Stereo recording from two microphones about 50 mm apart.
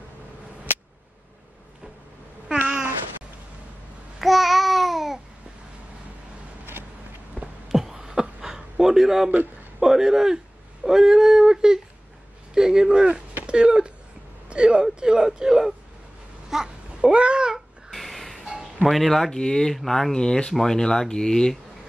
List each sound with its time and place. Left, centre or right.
4.2 s babbling: centre
7.6 s a sound: centre
9.8 s speech: centre
16.4 s babbling: centre
17.9 s music: centre
18.9 s speech: centre